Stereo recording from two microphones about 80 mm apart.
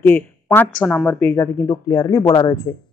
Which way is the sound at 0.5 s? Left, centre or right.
Centre.